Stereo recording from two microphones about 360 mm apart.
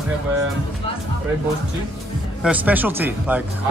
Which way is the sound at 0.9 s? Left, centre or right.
Centre.